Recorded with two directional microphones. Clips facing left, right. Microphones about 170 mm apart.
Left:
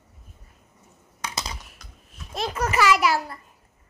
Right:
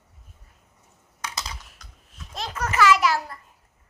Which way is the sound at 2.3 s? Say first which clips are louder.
Left 4 dB; 10° left (ahead or behind).